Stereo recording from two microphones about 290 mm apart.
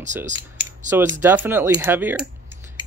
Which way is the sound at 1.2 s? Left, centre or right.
Centre.